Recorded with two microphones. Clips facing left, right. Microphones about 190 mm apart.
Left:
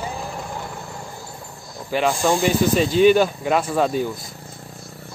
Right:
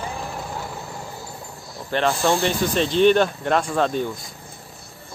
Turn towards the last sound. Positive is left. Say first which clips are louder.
# left 1 dB
turn(degrees=5)  # may be behind; listen again after turning